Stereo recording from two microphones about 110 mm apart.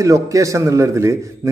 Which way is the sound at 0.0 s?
30° right (ahead or behind).